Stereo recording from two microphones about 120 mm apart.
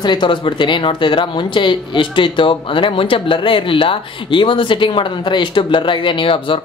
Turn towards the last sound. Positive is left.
turn(degrees=45)  # may be behind; listen again after turning